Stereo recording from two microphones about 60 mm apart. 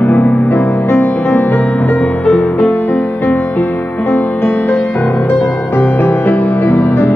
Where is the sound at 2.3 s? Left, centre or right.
Centre.